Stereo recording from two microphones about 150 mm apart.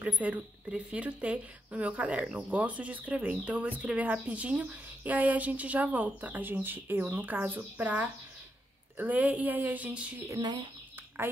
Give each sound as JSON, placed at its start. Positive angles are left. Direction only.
{"t": 0.0, "sound": "speech", "side_deg": -10}
{"t": 10.3, "sound": "speech", "side_deg": -30}